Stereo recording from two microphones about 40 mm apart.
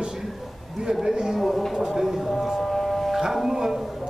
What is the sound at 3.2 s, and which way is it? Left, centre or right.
Speech, centre.